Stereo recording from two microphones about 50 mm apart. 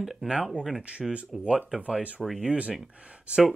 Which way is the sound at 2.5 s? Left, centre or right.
Right.